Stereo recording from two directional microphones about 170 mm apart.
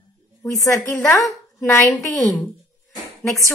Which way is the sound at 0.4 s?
20° left (ahead or behind).